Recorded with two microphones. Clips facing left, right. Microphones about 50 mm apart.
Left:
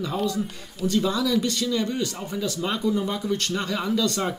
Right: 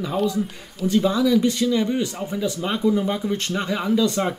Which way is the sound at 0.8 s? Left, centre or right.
Centre.